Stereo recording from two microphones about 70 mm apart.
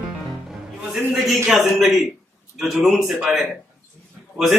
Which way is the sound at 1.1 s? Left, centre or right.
Centre.